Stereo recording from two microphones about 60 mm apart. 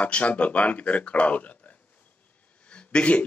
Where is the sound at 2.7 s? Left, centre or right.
Centre.